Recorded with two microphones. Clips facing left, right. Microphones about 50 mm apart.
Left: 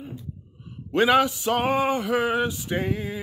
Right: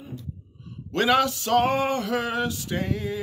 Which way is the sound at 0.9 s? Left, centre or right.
Centre.